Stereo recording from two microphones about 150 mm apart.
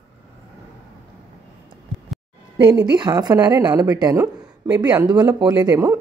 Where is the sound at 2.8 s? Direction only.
30° right (ahead or behind).